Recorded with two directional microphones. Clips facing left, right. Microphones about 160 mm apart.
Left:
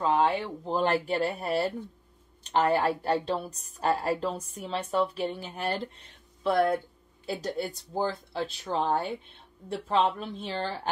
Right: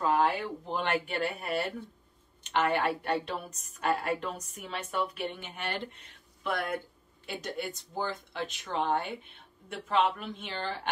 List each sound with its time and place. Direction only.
0.0 s a woman's voice: 25° left (ahead or behind)